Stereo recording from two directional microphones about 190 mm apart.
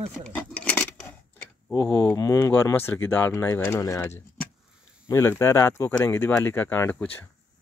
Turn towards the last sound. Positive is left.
turn(degrees=10)  # may be behind; listen again after turning